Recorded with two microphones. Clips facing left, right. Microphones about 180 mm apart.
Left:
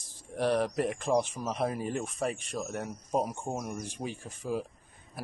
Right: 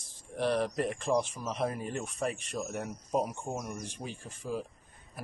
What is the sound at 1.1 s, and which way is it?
Speech, 40° left (ahead or behind).